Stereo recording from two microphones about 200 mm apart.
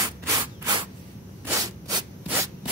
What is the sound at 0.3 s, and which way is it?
Rub, 20° right (ahead or behind).